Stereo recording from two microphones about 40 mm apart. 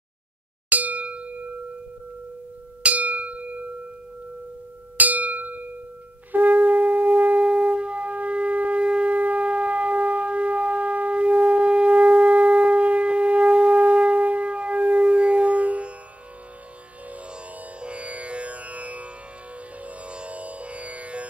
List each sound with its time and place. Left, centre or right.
0.7 s clang: right
1.0 s a sound: right
2.8 s singing bowl: right
3.3 s bell: right
4.9 s a sound: right
6.3 s shofar: right
7.4 s shofar: right
9.1 s shofar: right
17.7 s music: right